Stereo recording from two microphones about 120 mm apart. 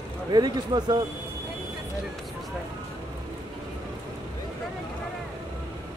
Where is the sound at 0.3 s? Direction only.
35° right (ahead or behind).